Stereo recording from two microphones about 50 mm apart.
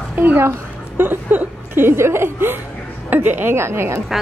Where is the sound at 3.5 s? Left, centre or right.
Right.